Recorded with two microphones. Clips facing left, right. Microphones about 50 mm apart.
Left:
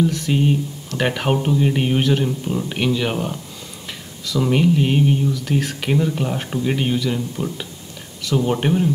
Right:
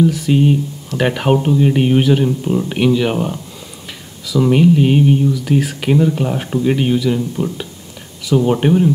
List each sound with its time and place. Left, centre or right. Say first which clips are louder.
0.0 s speech: right 5 dB; centre